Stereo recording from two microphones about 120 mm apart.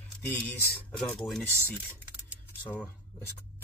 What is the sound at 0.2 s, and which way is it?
Speech, 15° left (ahead or behind).